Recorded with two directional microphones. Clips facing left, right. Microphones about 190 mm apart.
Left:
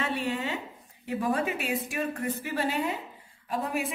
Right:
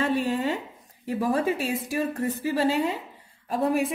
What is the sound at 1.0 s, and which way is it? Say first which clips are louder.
Speech: right 4 dB; 35° right (ahead or behind).